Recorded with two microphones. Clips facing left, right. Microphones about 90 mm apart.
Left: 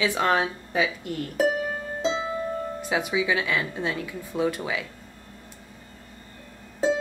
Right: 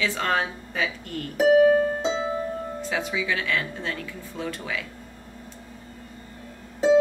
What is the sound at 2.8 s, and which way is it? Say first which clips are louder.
Speech: left 3 dB; 15° left (ahead or behind).